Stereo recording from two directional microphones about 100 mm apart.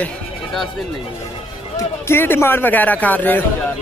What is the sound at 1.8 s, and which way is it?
A man's voice, 25° left (ahead or behind).